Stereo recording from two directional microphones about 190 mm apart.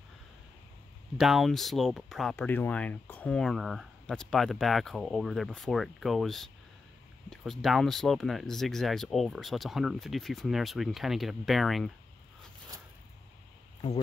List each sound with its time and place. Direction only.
1.1 s speech: centre (ahead or behind)